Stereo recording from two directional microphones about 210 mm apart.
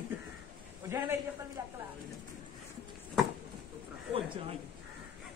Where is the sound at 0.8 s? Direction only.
10° right (ahead or behind).